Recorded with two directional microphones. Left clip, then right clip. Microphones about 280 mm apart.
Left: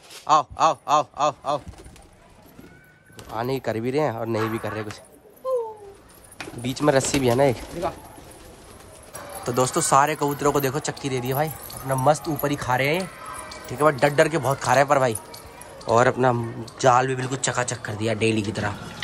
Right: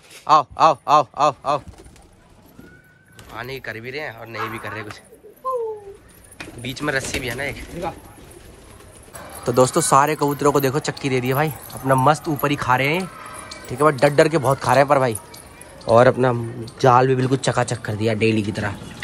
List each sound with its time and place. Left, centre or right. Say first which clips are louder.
0.1 s a man's voice: right 4 dB; centre
3.3 s a man's voice: left 4 dB; centre
6.6 s a man's voice: left 3 dB; centre
9.4 s a man's voice: right 6 dB; centre